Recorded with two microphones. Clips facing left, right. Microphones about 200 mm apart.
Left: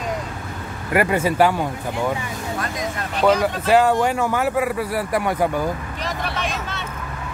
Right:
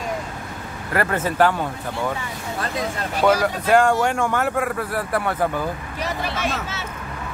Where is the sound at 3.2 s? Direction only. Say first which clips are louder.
Left 1 dB; 5° left (ahead or behind).